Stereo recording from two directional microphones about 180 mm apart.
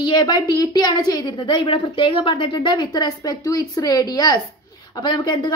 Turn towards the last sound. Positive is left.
turn(degrees=25)  # may be behind; listen again after turning